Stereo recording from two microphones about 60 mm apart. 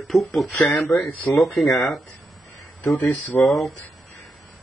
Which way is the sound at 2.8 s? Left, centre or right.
Left.